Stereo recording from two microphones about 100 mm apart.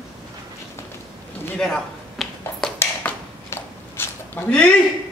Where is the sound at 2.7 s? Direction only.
25° left (ahead or behind).